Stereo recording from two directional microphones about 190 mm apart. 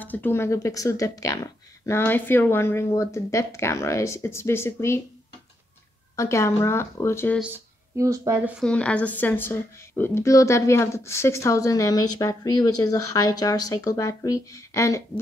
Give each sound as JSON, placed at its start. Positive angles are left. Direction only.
{"t": 0.0, "sound": "a woman's voice", "side_deg": 10}
{"t": 6.1, "sound": "a woman's voice", "side_deg": 15}
{"t": 7.3, "sound": "speech", "side_deg": -10}
{"t": 8.5, "sound": "a woman's voice", "side_deg": 5}